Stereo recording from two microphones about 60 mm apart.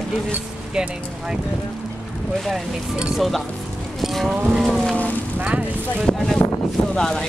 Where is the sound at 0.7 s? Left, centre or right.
Centre.